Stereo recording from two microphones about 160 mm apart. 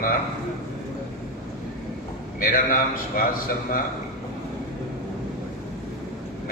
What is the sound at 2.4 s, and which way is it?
Speech, 60° left (ahead or behind).